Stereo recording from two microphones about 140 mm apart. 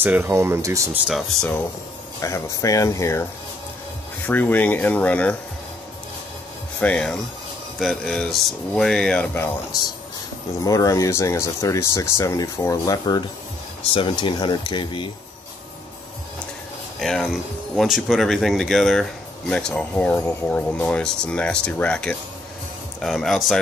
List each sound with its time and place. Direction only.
0.0 s speech: 15° right (ahead or behind)
1.0 s speech: centre (ahead or behind)
2.2 s speech: 20° left (ahead or behind)
4.3 s speech: 10° left (ahead or behind)
6.8 s speech: 5° left (ahead or behind)
10.6 s speech: 25° left (ahead or behind)
17.0 s speech: centre (ahead or behind)